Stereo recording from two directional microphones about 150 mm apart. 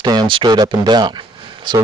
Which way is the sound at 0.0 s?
30° right (ahead or behind).